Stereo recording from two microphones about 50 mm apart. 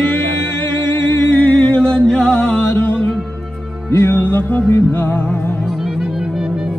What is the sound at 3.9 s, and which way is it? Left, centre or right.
Music, left.